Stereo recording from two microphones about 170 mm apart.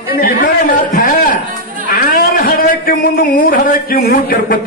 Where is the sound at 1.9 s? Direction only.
60° left (ahead or behind).